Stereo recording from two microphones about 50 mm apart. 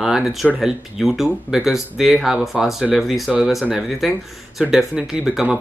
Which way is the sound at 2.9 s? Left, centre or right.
Centre.